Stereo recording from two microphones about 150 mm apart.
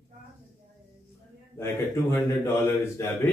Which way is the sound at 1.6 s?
15° left (ahead or behind).